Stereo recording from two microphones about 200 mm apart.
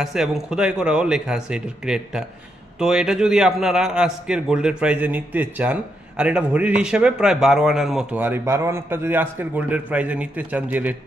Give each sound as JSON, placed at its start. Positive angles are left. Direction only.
{"t": 0.0, "sound": "a man's voice", "side_deg": 0}